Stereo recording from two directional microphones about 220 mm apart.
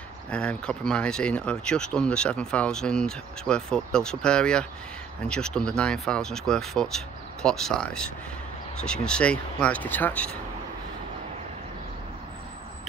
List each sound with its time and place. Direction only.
0.3 s speech: 5° left (ahead or behind)